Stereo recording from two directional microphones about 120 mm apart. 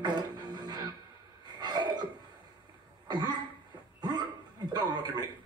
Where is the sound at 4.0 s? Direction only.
35° right (ahead or behind).